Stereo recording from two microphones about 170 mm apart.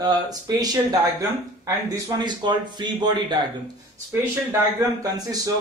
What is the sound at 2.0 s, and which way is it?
Speech, 25° right (ahead or behind).